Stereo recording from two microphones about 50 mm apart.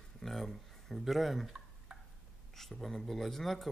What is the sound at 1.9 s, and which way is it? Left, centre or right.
Turkey, centre.